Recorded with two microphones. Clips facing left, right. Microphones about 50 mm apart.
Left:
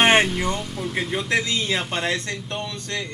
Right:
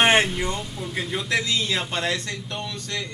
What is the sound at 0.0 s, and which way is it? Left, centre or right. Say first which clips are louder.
A woman's voice: left 2 dB; centre.